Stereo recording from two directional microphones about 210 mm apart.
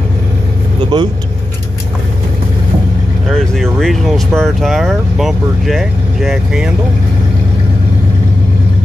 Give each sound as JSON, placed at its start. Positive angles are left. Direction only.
{"t": 0.9, "sound": "speech", "side_deg": -20}
{"t": 3.3, "sound": "speech", "side_deg": 0}